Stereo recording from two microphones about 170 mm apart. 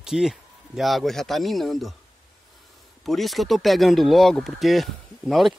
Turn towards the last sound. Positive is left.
turn(degrees=0)  # may be behind; listen again after turning